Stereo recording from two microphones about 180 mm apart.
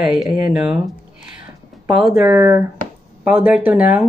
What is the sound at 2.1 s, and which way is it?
Speech, 10° right (ahead or behind).